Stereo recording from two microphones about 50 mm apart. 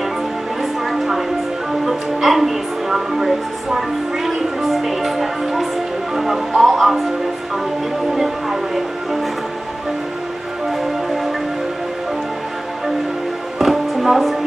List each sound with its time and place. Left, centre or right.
0.6 s music: centre
1.7 s speech: centre
8.1 s speech: centre
13.6 s music: centre